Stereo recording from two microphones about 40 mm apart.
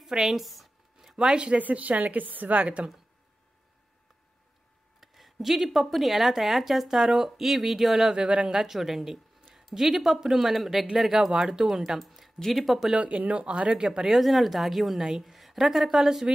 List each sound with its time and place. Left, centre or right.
0.0 s speech: centre
0.4 s a sound: centre
1.1 s speech: right
1.6 s a woman's voice: right
5.0 s a woman's voice: centre
8.1 s speech: right
8.5 s speech: centre
11.1 s a woman's voice: centre
12.9 s a woman's voice: right
13.7 s a woman's voice: centre
14.2 s a woman's voice: centre